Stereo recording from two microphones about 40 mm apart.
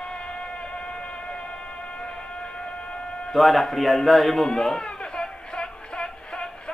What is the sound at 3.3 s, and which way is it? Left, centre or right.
Speech, centre.